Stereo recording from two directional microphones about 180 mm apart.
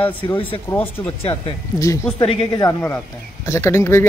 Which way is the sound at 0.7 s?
10° left (ahead or behind).